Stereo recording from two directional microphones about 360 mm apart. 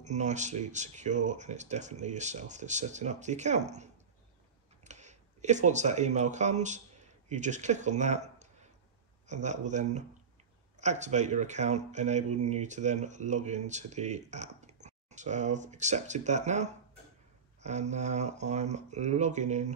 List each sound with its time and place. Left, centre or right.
0.0 s speech: centre